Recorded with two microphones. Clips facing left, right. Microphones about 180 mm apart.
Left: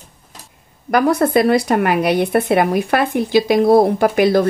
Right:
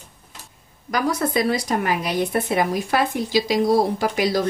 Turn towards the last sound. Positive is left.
turn(degrees=55)  # may be behind; listen again after turning